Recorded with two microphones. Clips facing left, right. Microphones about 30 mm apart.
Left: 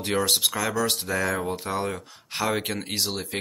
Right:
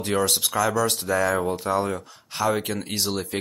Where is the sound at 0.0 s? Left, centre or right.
Centre.